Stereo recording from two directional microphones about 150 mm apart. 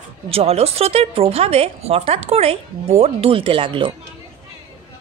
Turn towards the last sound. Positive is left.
turn(degrees=-35)  # may be behind; listen again after turning